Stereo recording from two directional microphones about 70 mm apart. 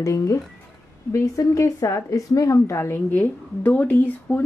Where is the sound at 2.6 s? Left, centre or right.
Left.